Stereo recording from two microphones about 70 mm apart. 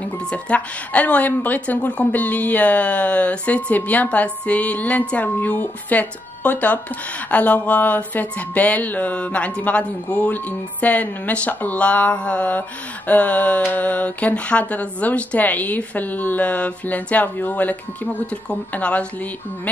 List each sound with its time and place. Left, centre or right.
0.0 s speech: centre